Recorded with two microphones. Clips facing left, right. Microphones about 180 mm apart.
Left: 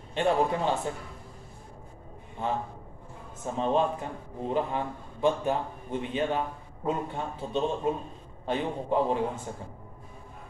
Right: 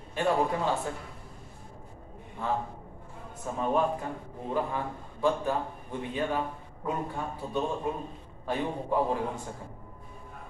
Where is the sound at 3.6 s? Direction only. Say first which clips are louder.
Left 1 dB; 25° left (ahead or behind).